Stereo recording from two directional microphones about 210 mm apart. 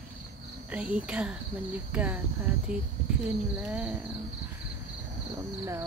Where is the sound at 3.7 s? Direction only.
5° right (ahead or behind).